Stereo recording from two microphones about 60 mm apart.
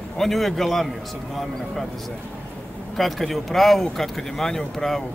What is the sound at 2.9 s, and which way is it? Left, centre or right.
Speech, centre.